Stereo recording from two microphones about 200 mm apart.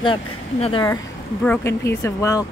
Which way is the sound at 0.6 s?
25° left (ahead or behind).